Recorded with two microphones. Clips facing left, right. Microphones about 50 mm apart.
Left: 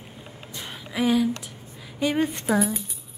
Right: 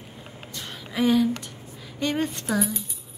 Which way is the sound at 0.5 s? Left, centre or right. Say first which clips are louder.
Left 1 dB; centre.